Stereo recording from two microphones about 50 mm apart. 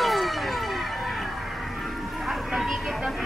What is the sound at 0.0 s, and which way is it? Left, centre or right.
Music, centre.